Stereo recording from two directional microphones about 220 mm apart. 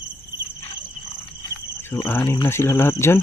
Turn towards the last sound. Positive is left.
turn(degrees=10)  # may be behind; listen again after turning